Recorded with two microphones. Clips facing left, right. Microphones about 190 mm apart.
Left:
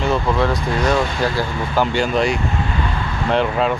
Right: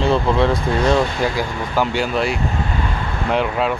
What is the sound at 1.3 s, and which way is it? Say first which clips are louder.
Speech: left 1 dB; 10° right (ahead or behind).